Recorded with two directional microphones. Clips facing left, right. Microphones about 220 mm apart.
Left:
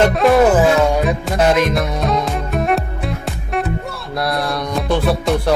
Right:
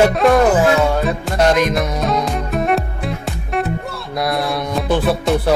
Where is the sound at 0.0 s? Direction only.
Centre (ahead or behind).